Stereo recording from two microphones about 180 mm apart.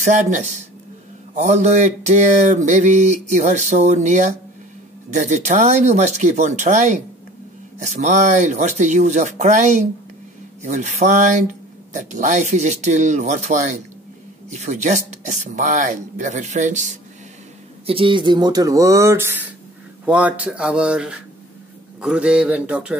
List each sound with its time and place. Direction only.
0.0 s speech: 45° right (ahead or behind)
17.8 s speech: 30° right (ahead or behind); by 21.2 s 5° right (ahead or behind)
22.0 s a sound: 5° right (ahead or behind)